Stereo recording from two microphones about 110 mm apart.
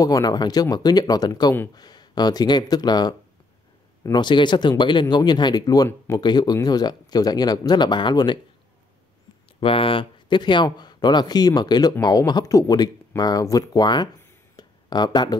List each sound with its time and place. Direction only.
0.0 s speech: 35° left (ahead or behind)
9.6 s speech: 55° left (ahead or behind)
14.6 s a sound: 40° left (ahead or behind)